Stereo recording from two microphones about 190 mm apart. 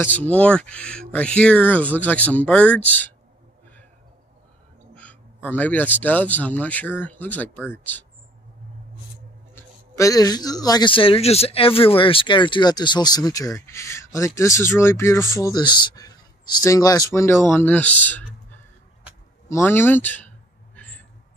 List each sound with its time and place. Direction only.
0.0 s speech: 10° left (ahead or behind)
4.9 s speech: 10° left (ahead or behind)
9.6 s a man's voice: 15° left (ahead or behind)
18.0 s a sound: 10° left (ahead or behind)